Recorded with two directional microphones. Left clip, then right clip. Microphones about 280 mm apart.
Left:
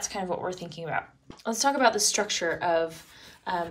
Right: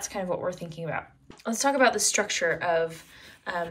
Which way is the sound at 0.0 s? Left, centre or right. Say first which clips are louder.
Right 1 dB; centre.